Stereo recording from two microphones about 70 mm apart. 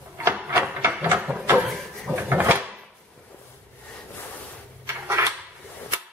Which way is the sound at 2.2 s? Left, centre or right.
Right.